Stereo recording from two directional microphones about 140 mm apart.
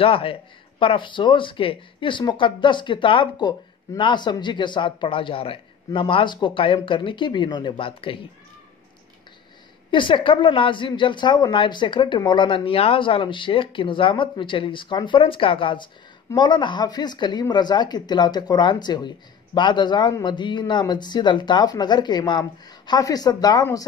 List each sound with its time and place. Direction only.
0.0 s speech: 40° left (ahead or behind)
9.8 s speech: 35° left (ahead or behind)